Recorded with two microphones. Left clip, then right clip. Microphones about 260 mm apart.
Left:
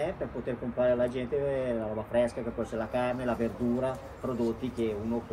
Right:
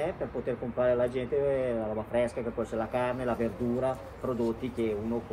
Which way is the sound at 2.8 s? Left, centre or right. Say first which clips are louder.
Even; centre.